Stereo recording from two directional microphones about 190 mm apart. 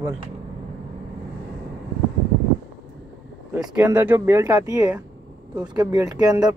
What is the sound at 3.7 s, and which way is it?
Speech, 10° right (ahead or behind).